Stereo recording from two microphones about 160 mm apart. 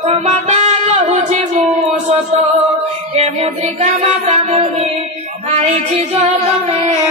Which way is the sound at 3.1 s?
40° right (ahead or behind).